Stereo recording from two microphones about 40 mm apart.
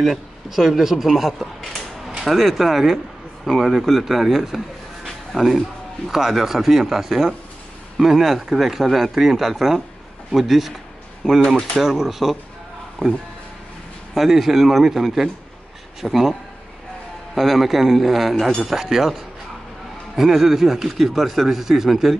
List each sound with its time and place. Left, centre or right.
0.0 s speech: centre
5.0 s music: centre
6.0 s speech: centre
11.2 s speech: right
11.8 s speech: centre
13.0 s speech: centre
17.4 s speech: centre